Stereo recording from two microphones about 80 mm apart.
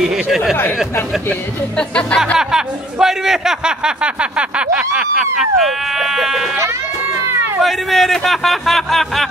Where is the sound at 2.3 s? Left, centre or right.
Centre.